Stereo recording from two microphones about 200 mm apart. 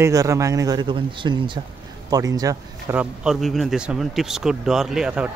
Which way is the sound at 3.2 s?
Centre (ahead or behind).